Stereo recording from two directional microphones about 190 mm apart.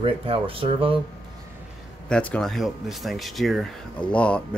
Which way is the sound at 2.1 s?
5° left (ahead or behind).